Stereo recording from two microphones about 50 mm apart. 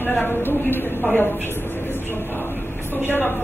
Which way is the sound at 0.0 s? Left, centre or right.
Left.